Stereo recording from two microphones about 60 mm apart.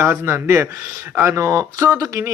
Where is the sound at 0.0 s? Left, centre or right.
Right.